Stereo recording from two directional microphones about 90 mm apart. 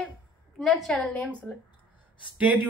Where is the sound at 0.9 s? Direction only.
15° left (ahead or behind).